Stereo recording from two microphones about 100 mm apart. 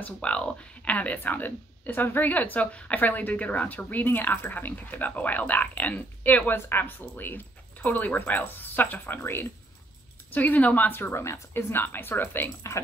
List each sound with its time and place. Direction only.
0.0 s a woman's voice: 10° left (ahead or behind)